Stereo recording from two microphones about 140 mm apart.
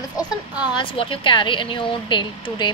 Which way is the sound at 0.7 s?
40° left (ahead or behind).